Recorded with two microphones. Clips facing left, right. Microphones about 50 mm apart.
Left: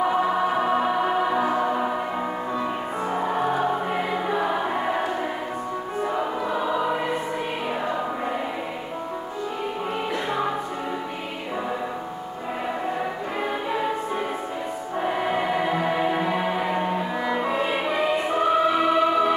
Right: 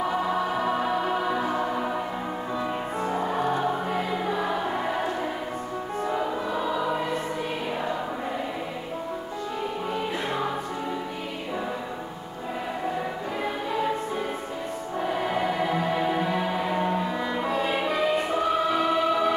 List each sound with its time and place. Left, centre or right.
0.3 s music: centre
6.0 s choir: centre
13.4 s music: left
15.0 s music: left